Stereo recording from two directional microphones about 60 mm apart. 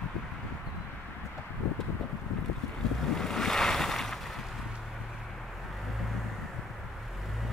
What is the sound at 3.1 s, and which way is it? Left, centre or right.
Waves, centre.